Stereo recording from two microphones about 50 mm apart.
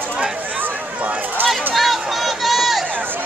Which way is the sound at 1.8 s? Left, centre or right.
Centre.